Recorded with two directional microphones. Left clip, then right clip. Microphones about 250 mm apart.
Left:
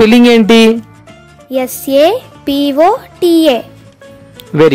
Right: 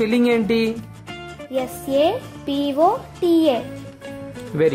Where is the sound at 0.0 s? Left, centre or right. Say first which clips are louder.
Left 12 dB; left.